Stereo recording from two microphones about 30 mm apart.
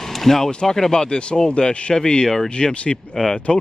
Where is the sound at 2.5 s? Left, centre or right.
Left.